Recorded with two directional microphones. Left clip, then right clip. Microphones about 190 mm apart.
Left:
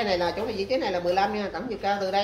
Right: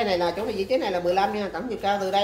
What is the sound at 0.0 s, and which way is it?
A woman's voice, 15° right (ahead or behind).